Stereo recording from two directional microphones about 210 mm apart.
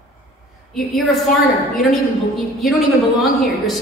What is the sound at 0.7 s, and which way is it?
A woman's voice, centre (ahead or behind).